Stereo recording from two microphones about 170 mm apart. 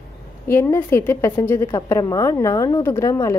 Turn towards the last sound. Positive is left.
turn(degrees=15)  # may be behind; listen again after turning